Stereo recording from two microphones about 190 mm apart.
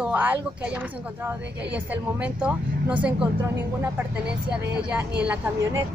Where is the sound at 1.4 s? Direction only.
65° right (ahead or behind).